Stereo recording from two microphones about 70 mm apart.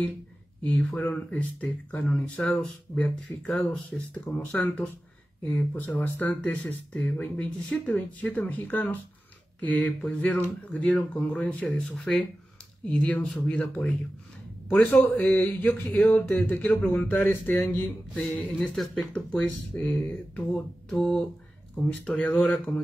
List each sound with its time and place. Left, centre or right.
0.8 s speech: left
8.2 s speech: left
18.5 s speech: centre